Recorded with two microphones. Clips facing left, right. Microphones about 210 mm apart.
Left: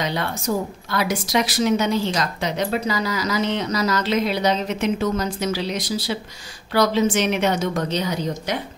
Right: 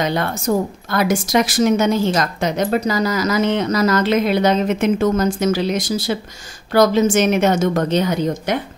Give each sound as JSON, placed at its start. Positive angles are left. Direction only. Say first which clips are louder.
{"t": 0.0, "sound": "a woman's voice", "louder": "right 5 dB", "side_deg": -50}